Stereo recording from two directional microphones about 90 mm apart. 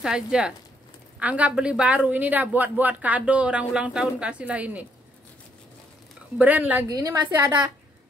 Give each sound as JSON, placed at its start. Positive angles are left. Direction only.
{"t": 0.0, "sound": "speech", "side_deg": -10}
{"t": 6.3, "sound": "speech", "side_deg": -20}
{"t": 6.9, "sound": "a woman's voice", "side_deg": -40}